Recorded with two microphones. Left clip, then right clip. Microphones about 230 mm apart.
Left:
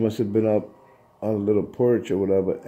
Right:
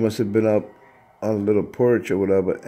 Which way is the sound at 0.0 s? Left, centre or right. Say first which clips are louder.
Right 2 dB; centre.